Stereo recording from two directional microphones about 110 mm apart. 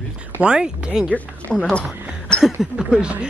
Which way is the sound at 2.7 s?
5° right (ahead or behind).